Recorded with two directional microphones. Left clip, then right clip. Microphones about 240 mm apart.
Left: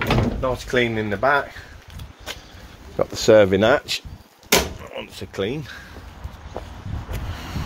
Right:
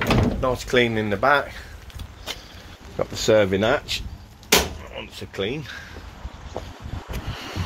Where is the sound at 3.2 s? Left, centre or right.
Left.